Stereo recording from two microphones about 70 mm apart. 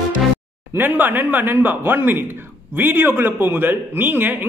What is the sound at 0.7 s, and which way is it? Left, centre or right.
A man's voice, right.